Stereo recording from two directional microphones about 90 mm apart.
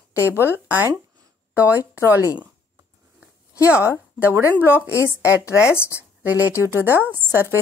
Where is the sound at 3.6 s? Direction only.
20° right (ahead or behind).